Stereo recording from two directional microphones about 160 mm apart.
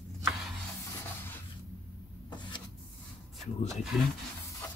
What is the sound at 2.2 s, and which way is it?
Rub, 30° left (ahead or behind).